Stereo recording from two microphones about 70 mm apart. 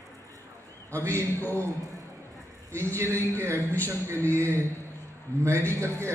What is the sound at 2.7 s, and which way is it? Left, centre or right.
A man's voice, right.